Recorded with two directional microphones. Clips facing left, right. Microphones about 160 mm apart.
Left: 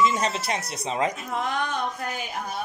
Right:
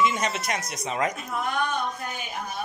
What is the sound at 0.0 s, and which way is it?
Speech, 35° left (ahead or behind).